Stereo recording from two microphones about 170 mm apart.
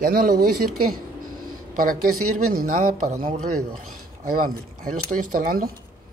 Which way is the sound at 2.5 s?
50° right (ahead or behind).